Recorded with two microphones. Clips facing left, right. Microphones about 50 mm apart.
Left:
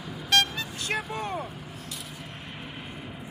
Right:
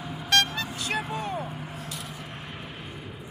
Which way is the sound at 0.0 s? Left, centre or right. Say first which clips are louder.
Even; centre.